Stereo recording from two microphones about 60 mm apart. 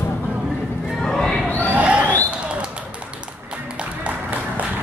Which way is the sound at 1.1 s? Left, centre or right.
Centre.